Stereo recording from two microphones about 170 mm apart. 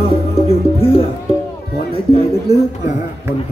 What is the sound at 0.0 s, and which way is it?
Music, 35° left (ahead or behind).